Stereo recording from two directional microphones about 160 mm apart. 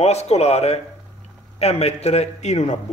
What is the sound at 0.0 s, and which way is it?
A man's voice, 40° left (ahead or behind).